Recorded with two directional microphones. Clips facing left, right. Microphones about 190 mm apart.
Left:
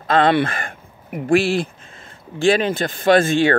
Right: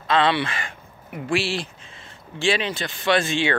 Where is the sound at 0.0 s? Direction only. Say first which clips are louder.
Left 5 dB; 50° left (ahead or behind).